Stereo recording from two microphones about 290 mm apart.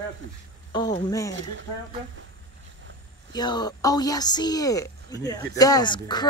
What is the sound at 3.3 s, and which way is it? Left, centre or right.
Speech, centre.